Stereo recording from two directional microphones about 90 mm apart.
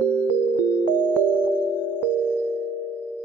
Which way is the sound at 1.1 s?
15° right (ahead or behind).